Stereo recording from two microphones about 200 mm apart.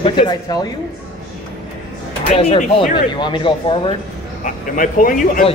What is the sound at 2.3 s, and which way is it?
Speech, 30° left (ahead or behind).